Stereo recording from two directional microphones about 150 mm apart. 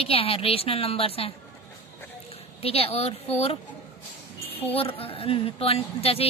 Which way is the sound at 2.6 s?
40° left (ahead or behind).